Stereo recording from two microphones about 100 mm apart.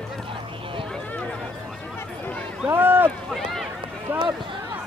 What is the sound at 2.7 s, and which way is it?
Boat, 20° right (ahead or behind).